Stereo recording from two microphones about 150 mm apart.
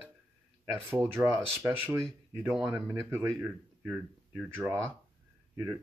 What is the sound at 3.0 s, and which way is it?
Speech, 15° right (ahead or behind).